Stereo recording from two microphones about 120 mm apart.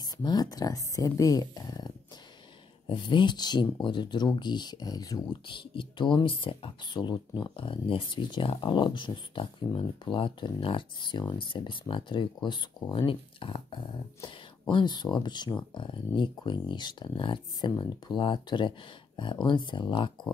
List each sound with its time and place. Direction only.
0.0 s speech: 35° left (ahead or behind)
2.9 s speech: 45° left (ahead or behind)
5.5 s speech: 45° left (ahead or behind)